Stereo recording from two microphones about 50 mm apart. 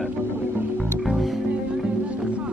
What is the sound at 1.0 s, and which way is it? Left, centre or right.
Music, centre.